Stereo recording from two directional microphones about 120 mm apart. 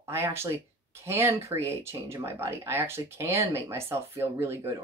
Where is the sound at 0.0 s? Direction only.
20° right (ahead or behind).